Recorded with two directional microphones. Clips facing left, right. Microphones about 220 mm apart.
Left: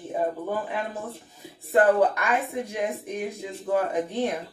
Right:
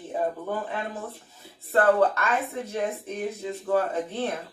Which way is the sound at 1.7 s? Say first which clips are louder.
Left 1 dB; 15° left (ahead or behind).